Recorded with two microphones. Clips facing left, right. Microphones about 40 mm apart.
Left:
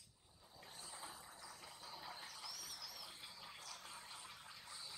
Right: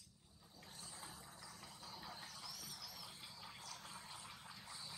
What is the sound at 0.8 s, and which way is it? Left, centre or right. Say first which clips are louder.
Vehicle: left 2 dB; centre.